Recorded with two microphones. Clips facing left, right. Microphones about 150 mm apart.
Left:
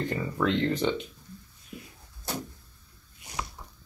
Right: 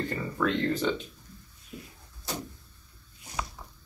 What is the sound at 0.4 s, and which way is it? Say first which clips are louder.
Speech: left 1 dB; 20° left (ahead or behind).